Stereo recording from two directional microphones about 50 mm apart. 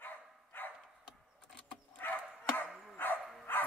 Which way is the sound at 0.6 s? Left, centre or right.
Left.